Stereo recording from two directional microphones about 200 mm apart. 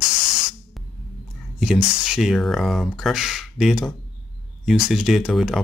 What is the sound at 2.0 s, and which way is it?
Speech, centre (ahead or behind).